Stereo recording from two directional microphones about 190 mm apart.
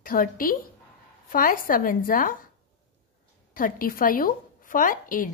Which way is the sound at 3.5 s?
45° left (ahead or behind).